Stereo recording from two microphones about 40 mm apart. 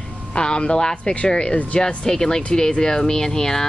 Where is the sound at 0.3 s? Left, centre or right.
Left.